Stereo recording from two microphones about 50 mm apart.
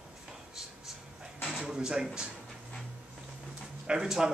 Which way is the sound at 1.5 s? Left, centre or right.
Centre.